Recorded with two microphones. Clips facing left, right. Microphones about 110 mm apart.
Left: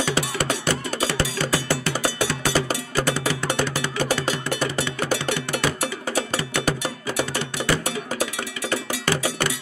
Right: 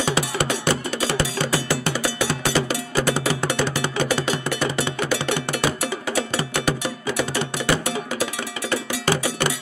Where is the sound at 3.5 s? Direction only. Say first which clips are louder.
Right 1 dB; 45° left (ahead or behind).